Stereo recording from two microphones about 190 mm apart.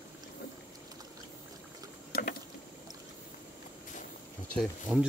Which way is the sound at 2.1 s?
45° left (ahead or behind).